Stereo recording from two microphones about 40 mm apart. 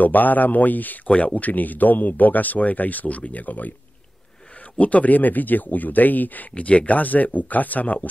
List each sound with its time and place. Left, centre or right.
0.0 s speech: left
4.7 s speech: left
6.5 s speech: left